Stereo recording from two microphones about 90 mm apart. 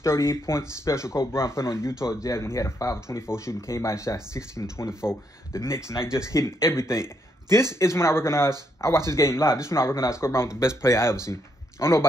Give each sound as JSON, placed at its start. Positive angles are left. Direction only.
{"t": 0.0, "sound": "speech", "side_deg": 30}